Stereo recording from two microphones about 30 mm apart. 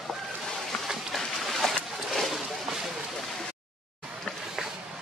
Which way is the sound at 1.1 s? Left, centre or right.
Centre.